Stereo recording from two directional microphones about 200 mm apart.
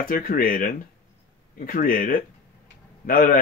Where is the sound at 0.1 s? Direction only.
45° left (ahead or behind).